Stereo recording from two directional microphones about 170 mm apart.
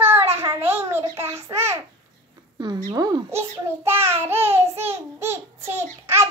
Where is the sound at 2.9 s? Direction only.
20° right (ahead or behind).